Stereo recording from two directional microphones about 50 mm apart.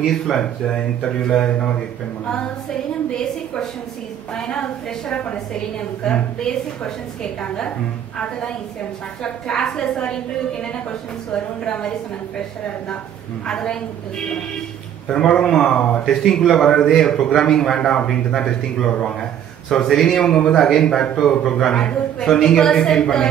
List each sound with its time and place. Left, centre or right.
0.0 s a man's voice: centre
9.2 s a man's voice: centre
13.5 s a woman's voice: left
15.0 s a man's voice: centre
16.2 s a man's voice: centre